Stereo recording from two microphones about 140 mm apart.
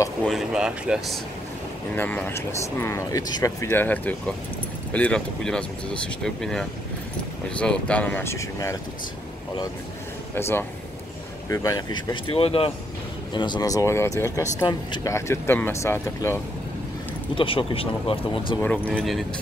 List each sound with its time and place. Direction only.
0.2 s speech: centre (ahead or behind)
2.0 s speech: 10° left (ahead or behind)
10.3 s speech: 15° left (ahead or behind)
17.4 s speech: 40° left (ahead or behind)
18.6 s speech: 10° left (ahead or behind)